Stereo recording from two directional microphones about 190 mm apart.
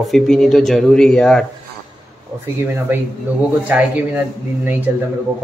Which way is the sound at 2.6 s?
10° right (ahead or behind).